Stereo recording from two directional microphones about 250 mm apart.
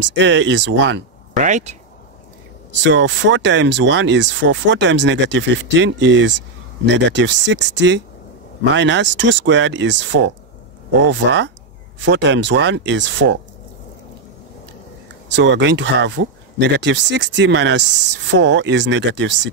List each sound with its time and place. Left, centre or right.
0.0 s speech: right
1.3 s speech: right
2.7 s speech: right
15.2 s speech: right